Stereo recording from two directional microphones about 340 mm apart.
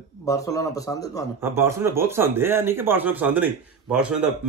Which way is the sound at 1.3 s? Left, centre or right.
Centre.